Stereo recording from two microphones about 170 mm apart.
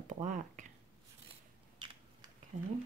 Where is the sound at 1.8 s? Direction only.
30° right (ahead or behind).